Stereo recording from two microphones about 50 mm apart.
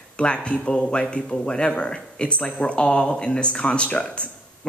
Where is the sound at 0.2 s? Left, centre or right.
Left.